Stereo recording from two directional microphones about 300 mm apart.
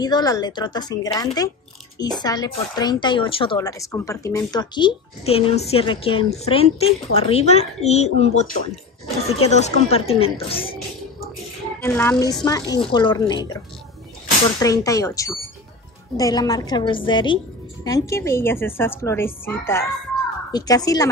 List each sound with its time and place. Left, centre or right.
0.0 s speech: centre
11.8 s speech: centre
14.6 s speech: centre